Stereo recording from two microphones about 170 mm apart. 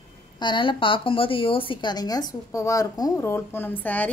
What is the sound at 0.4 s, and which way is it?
A woman's voice, 30° left (ahead or behind).